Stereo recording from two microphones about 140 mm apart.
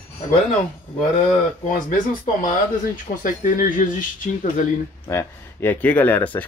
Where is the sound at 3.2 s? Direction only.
75° left (ahead or behind).